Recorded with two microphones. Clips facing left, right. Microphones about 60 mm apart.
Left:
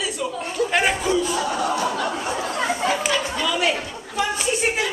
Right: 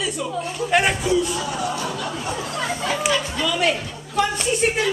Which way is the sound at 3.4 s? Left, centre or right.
Centre.